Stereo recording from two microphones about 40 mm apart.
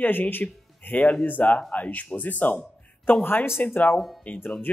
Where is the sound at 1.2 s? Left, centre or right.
Left.